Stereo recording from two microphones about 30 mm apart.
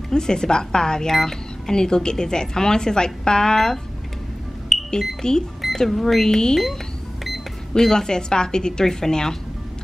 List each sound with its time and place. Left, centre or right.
0.1 s speech: left
4.7 s smoke detector: centre
5.2 s speech: left
5.9 s speech: centre
6.2 s speech: centre